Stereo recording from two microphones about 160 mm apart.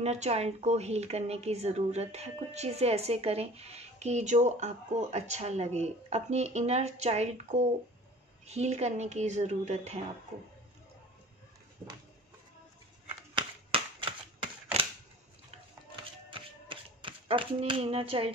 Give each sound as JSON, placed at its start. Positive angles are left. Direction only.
{"t": 0.0, "sound": "speech", "side_deg": -40}
{"t": 14.4, "sound": "a sound", "side_deg": -35}
{"t": 16.3, "sound": "shuffle", "side_deg": -30}